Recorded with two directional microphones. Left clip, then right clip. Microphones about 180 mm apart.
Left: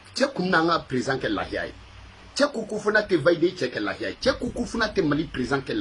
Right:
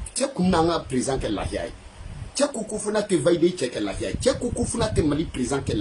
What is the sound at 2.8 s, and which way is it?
Speech, 20° right (ahead or behind).